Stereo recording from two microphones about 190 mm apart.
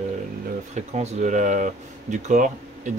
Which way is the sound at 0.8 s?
35° right (ahead or behind).